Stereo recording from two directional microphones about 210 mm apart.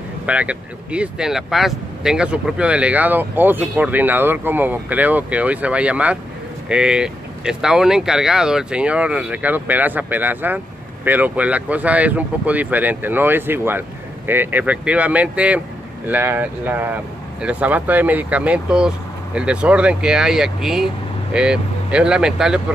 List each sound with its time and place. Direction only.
0.3 s speech: 5° right (ahead or behind)